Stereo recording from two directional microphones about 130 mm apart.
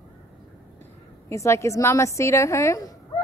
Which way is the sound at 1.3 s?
20° left (ahead or behind).